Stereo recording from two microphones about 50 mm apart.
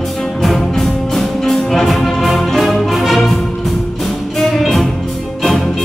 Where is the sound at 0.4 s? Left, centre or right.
Centre.